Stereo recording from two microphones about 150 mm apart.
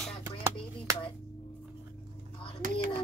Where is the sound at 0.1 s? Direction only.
40° left (ahead or behind).